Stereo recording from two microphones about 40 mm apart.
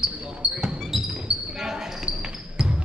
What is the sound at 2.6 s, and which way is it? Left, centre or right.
Music, centre.